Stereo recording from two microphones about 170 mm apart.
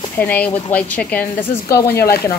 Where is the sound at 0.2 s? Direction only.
10° left (ahead or behind).